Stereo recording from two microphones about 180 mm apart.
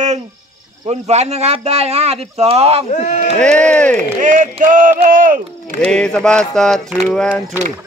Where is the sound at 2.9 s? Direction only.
40° left (ahead or behind).